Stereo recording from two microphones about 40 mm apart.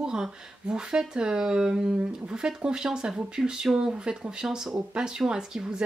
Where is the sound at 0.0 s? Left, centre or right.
Centre.